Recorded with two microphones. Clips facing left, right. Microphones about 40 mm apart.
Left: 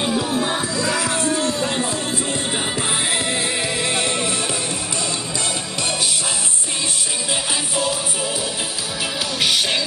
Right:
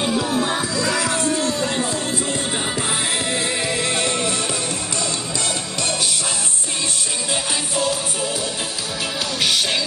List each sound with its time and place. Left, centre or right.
0.0 s music: centre
0.7 s music: left
3.4 s music: centre
7.7 s music: centre
9.4 s music: centre